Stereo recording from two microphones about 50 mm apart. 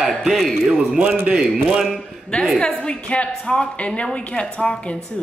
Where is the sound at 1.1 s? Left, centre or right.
Right.